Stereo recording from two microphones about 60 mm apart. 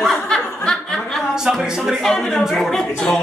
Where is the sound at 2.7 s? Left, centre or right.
Centre.